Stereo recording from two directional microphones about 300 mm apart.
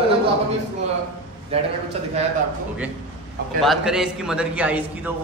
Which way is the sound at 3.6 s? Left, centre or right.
Centre.